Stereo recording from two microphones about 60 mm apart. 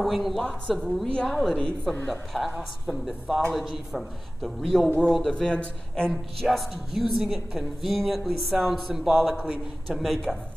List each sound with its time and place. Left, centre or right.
0.0 s a woman's voice: centre
4.4 s a woman's voice: centre
5.4 s a man's voice: centre
6.4 s a woman's voice: centre